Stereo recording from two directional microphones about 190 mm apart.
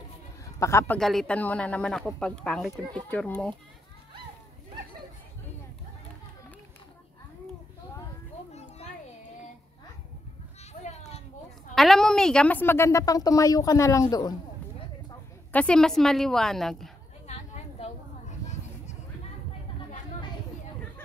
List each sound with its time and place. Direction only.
0.6 s a woman's voice: 15° left (ahead or behind)
0.9 s speech: centre (ahead or behind)
10.7 s children playing: 35° left (ahead or behind)
11.7 s a woman's voice: centre (ahead or behind); by 14.3 s 20° left (ahead or behind)
15.5 s speech: 5° left (ahead or behind)